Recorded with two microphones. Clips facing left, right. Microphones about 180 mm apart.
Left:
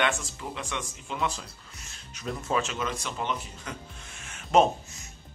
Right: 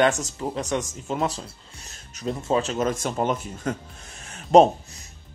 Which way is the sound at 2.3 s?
25° right (ahead or behind).